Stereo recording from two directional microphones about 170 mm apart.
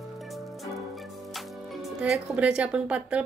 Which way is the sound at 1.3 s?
Centre (ahead or behind).